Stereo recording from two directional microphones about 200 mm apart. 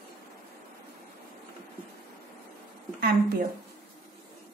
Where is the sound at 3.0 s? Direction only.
50° right (ahead or behind).